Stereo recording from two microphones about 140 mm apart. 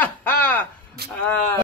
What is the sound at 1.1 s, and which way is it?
Speech, 15° left (ahead or behind).